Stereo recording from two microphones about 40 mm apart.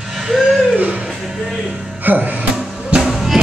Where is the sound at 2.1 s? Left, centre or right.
Right.